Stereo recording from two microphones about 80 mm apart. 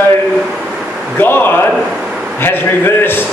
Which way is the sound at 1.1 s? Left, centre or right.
Left.